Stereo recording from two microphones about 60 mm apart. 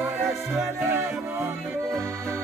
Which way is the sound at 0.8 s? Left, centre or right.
Right.